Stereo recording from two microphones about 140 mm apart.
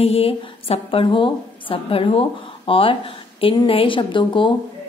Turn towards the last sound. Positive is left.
turn(degrees=35)  # may be behind; listen again after turning